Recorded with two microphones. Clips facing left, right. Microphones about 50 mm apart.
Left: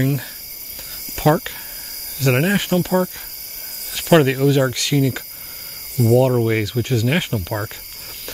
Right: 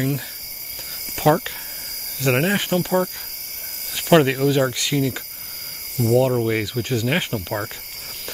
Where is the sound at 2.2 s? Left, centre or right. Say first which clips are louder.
Left 2 dB; right.